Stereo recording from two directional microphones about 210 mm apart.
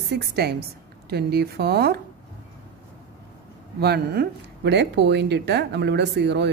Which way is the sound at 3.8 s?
50° right (ahead or behind).